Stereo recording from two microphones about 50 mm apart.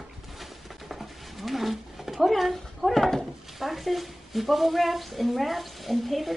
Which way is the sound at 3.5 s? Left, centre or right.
Centre.